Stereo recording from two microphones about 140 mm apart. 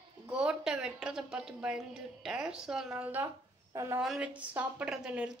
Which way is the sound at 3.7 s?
20° right (ahead or behind).